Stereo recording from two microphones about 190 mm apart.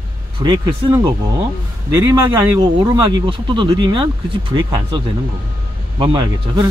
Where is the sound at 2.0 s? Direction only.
20° right (ahead or behind).